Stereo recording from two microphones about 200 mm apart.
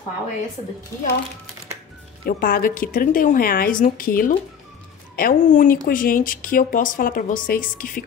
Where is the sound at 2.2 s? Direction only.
45° left (ahead or behind).